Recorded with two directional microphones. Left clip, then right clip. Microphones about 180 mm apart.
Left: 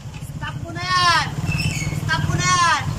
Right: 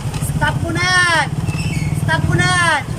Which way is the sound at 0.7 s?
40° right (ahead or behind).